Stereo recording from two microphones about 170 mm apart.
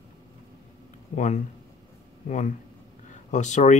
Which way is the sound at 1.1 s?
45° left (ahead or behind).